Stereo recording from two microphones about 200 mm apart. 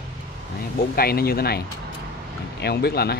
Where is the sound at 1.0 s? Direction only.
50° left (ahead or behind).